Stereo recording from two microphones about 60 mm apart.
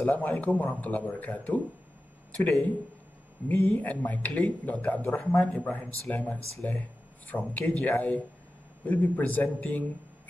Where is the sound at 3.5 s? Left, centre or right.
Left.